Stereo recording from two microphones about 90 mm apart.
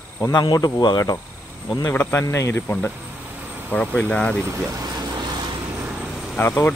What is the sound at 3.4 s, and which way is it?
Vehicle, 20° right (ahead or behind).